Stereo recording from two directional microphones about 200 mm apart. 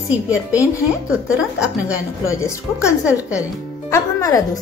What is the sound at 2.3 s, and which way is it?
Speech, 15° left (ahead or behind).